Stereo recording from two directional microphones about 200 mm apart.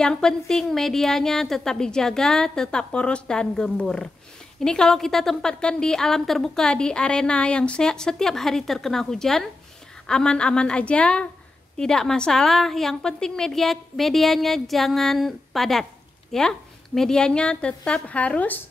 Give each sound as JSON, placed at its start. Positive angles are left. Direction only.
{"t": 0.0, "sound": "a woman's voice", "side_deg": 5}